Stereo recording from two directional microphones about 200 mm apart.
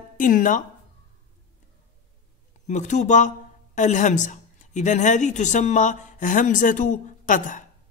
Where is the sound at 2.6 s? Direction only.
35° left (ahead or behind).